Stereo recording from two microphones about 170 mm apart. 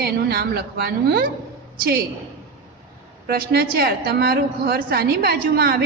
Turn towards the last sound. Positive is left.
turn(degrees=-60)  # may be behind; listen again after turning